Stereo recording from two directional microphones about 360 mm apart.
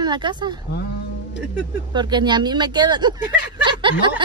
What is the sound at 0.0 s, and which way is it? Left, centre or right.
Speech, centre.